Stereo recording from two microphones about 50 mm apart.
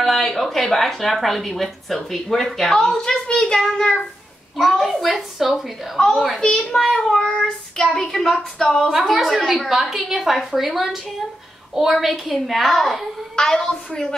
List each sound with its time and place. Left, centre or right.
0.0 s a woman's voice: centre
4.6 s a woman's voice: centre
5.9 s speech: centre
9.1 s a woman's voice: centre